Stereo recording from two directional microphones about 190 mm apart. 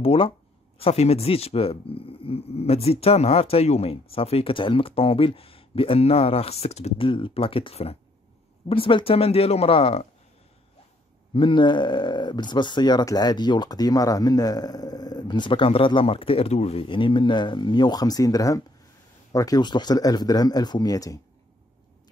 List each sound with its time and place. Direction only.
0.0 s speech: 30° left (ahead or behind)
11.3 s speech: 25° left (ahead or behind)